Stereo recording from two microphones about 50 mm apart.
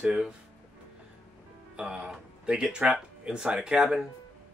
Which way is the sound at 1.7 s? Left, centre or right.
Centre.